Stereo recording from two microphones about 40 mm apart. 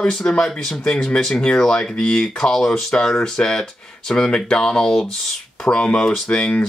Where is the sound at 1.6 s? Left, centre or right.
Centre.